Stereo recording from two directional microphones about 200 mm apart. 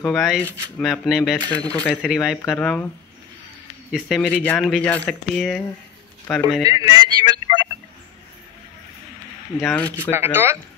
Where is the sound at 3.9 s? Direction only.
5° left (ahead or behind).